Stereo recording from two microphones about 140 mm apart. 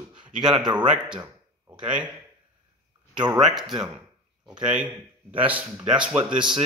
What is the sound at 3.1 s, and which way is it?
Speech, 30° right (ahead or behind).